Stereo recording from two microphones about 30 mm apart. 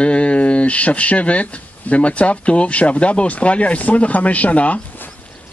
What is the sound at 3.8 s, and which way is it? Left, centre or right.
Speech, left.